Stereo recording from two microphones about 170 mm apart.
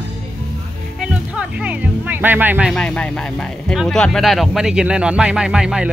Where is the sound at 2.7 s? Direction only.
5° left (ahead or behind).